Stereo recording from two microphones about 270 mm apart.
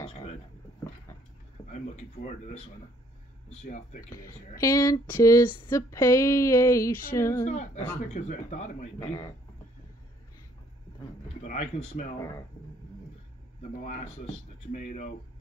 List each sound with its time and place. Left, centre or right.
0.0 s a sound: left
1.7 s speech: left
3.6 s speech: left
4.1 s a sound: centre
7.4 s speech: left
11.2 s speech: left
13.6 s speech: left